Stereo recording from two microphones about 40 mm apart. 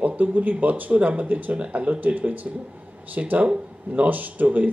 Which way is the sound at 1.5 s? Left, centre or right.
Right.